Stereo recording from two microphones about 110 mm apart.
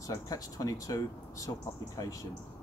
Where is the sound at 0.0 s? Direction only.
30° left (ahead or behind).